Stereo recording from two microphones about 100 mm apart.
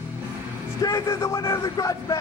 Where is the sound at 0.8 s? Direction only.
35° left (ahead or behind).